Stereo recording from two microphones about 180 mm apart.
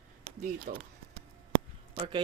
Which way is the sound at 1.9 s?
30° right (ahead or behind).